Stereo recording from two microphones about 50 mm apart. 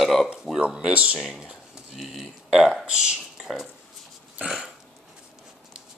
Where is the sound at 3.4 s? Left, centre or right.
Centre.